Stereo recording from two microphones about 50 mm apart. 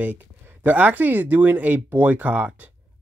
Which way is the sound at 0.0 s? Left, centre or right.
Right.